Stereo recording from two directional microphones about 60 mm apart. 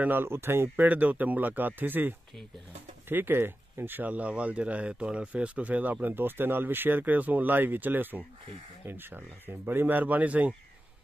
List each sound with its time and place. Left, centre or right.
0.0 s speech: right
0.7 s speech: right